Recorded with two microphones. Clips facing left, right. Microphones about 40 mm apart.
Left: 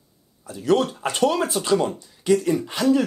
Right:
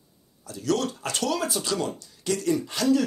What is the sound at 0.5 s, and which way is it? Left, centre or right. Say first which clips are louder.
Speech: left 6 dB; left.